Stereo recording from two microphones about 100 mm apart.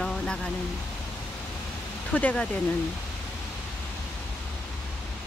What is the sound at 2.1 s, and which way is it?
Speech, 15° left (ahead or behind).